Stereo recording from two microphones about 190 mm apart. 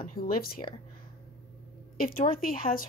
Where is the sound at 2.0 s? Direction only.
50° left (ahead or behind).